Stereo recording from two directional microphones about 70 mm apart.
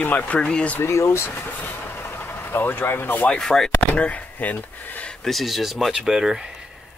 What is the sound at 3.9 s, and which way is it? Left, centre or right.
Speech, centre.